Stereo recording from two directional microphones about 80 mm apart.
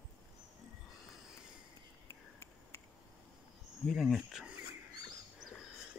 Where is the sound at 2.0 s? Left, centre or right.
Left.